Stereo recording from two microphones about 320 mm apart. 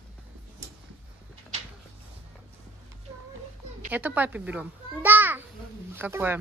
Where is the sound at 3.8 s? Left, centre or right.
Centre.